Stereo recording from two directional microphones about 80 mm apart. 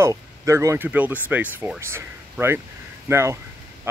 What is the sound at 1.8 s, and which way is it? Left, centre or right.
Speech, right.